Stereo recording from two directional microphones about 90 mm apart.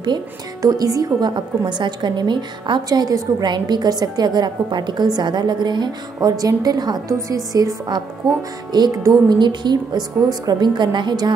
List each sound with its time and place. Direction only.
0.6 s a woman's voice: 40° right (ahead or behind)
1.6 s a woman's voice: 55° right (ahead or behind)